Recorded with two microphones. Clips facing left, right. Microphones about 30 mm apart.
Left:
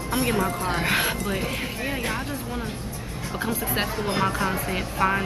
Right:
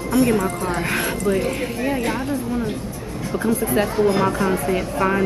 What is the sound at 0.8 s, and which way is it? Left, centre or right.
Speech, centre.